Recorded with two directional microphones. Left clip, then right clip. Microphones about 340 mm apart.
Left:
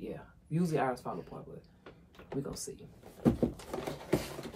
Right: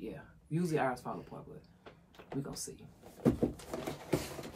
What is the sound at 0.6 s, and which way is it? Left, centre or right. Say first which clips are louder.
Speech: left 1 dB; centre.